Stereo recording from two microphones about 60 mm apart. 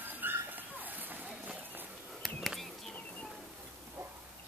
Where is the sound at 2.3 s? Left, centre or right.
Centre.